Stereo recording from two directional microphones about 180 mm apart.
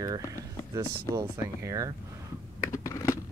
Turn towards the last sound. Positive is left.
turn(degrees=15)  # may be behind; listen again after turning